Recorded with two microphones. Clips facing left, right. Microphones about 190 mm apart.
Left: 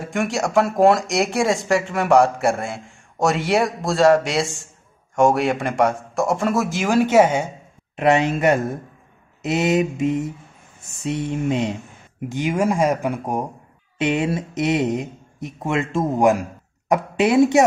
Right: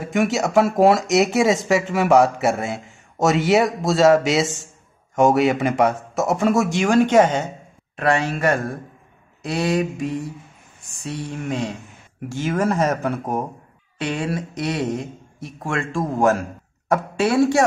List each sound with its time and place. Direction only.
0.0 s speech: centre (ahead or behind)
7.9 s speech: 20° left (ahead or behind)